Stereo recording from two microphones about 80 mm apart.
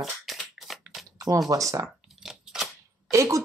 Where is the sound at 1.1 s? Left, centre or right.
Right.